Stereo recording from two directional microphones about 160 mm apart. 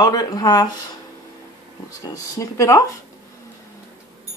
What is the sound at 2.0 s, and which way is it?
Speech, 20° left (ahead or behind).